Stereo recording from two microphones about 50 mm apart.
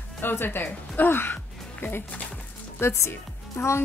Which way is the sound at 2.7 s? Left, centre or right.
Left.